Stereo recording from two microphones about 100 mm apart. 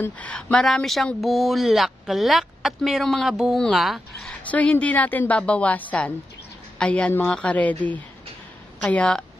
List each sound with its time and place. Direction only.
0.0 s speech: 10° left (ahead or behind)
4.4 s a woman's voice: 15° left (ahead or behind)